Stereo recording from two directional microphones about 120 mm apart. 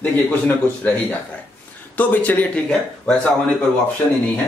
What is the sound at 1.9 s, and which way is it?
Speech, 15° left (ahead or behind).